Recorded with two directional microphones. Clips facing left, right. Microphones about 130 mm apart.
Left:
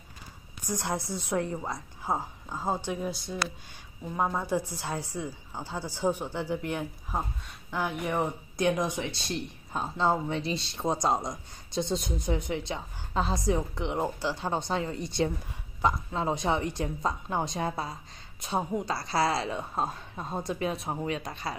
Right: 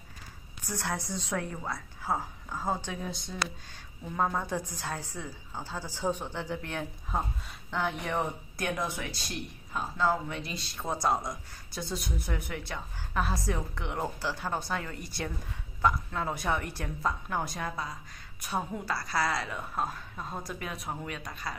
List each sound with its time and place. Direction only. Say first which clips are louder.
0.6 s a woman's voice: left 3 dB; 15° left (ahead or behind)